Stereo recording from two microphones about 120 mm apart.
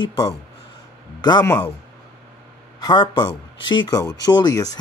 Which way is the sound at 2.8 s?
40° left (ahead or behind).